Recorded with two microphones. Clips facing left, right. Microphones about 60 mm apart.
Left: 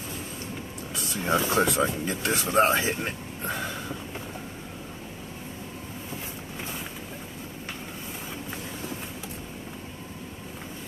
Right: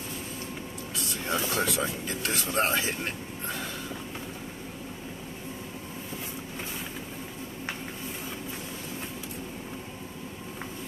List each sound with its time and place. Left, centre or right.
0.9 s speech: left